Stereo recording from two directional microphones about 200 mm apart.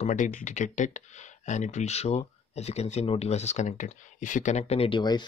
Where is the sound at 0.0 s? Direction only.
40° left (ahead or behind).